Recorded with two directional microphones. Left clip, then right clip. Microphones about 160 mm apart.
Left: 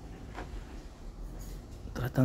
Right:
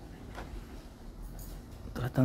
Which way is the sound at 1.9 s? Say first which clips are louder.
Left 1 dB; centre (ahead or behind).